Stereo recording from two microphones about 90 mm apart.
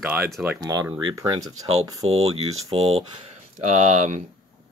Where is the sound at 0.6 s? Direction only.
45° right (ahead or behind).